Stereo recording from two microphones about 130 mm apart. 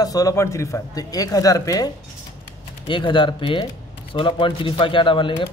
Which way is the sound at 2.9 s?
40° left (ahead or behind).